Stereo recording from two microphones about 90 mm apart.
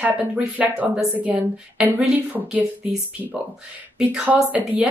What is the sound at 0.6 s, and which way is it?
A woman's voice, 15° right (ahead or behind).